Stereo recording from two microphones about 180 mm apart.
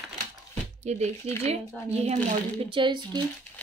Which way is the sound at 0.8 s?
40° right (ahead or behind).